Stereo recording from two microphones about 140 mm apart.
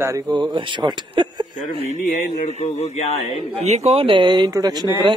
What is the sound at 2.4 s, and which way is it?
Speech, 50° left (ahead or behind).